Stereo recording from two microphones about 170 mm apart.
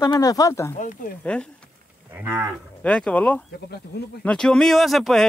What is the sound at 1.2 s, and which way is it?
Speech, 5° left (ahead or behind).